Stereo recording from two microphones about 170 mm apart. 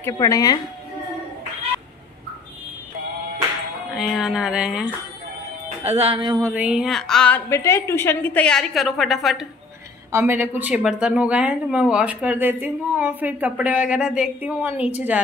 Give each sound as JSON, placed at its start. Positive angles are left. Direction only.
{"t": 0.0, "sound": "a woman's voice", "side_deg": 20}
{"t": 3.9, "sound": "a woman's voice", "side_deg": -5}
{"t": 5.9, "sound": "music", "side_deg": -35}
{"t": 6.4, "sound": "a woman's voice", "side_deg": -10}
{"t": 10.1, "sound": "speech", "side_deg": -15}